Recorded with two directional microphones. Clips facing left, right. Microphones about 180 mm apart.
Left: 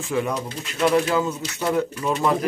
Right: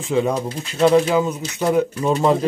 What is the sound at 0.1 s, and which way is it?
Speech, 20° right (ahead or behind).